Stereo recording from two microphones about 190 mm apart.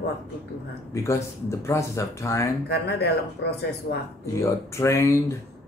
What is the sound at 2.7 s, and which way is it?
Speech, 60° left (ahead or behind).